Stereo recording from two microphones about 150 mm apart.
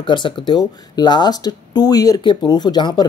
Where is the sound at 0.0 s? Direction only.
30° left (ahead or behind).